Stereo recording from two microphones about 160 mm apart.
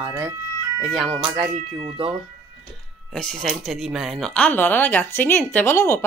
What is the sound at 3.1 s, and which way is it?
Speech, 5° left (ahead or behind).